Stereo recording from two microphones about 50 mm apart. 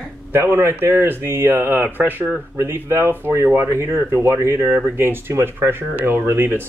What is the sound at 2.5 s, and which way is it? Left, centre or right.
Speech, right.